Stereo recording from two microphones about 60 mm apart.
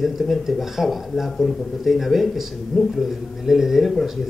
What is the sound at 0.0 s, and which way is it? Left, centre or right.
A man's voice, centre.